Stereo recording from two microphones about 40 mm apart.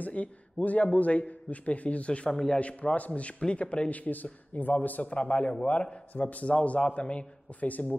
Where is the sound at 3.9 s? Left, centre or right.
Left.